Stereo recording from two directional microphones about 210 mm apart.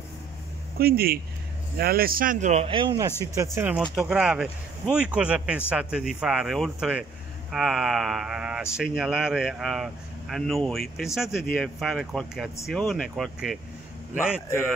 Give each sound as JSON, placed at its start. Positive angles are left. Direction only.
{"t": 0.7, "sound": "a man's voice", "side_deg": -45}
{"t": 3.5, "sound": "speech", "side_deg": -5}